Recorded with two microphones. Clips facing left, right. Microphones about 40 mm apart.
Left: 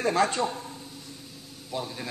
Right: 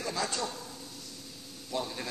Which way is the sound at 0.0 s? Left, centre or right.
Left.